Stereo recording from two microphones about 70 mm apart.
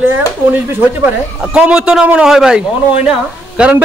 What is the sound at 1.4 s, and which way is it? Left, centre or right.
A woman's voice, centre.